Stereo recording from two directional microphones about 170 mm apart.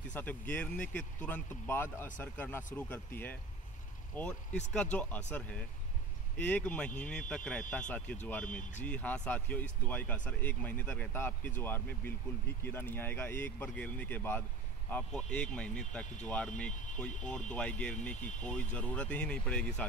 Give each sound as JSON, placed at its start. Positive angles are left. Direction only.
{"t": 0.1, "sound": "speech", "side_deg": 10}
{"t": 8.5, "sound": "speech", "side_deg": 50}
{"t": 8.8, "sound": "speech", "side_deg": 5}